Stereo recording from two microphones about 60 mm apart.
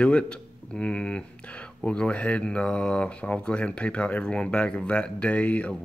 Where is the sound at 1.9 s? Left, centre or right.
Centre.